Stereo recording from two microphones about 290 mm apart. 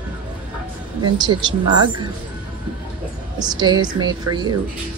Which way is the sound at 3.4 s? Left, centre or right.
Centre.